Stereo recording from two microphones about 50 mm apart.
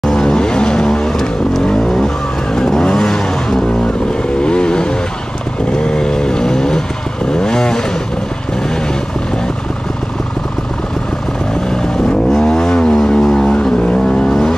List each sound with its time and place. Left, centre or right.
0.0 s vehicle: centre
11.7 s vehicle: centre
13.5 s vehicle: left